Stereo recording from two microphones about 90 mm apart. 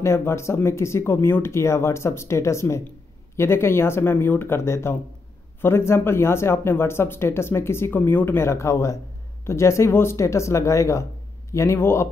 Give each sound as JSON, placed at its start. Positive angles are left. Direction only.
{"t": 0.0, "sound": "speech", "side_deg": 30}